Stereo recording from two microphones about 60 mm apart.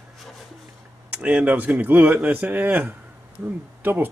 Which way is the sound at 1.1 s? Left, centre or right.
Right.